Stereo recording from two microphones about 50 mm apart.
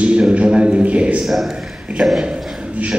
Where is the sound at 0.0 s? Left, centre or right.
Right.